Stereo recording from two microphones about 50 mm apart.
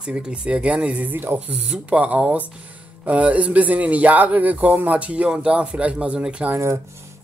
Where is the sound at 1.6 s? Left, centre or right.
Right.